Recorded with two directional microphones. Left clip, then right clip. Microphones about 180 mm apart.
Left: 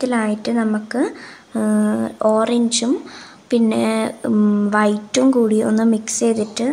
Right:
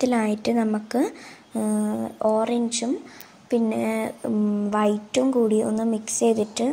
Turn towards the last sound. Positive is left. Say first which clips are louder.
# left 3 dB
turn(degrees=-10)  # may be behind; listen again after turning